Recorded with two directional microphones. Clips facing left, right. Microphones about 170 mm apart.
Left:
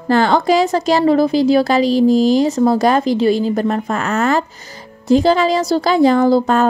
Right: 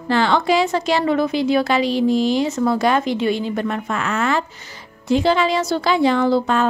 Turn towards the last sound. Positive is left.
turn(degrees=40)  # may be behind; listen again after turning